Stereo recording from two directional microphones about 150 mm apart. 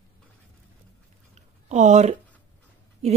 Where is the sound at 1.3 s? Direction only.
50° right (ahead or behind).